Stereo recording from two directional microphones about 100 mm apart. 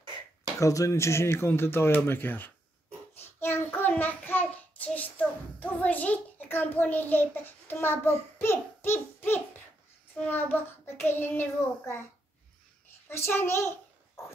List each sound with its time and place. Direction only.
0.6 s speech: 30° left (ahead or behind)
3.2 s child singing: 25° left (ahead or behind)
10.1 s speech: 20° left (ahead or behind)
13.1 s speech: 25° left (ahead or behind)